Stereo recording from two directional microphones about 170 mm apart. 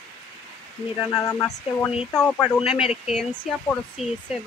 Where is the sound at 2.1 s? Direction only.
5° left (ahead or behind).